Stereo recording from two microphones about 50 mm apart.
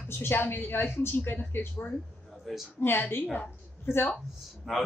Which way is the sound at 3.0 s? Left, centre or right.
Left.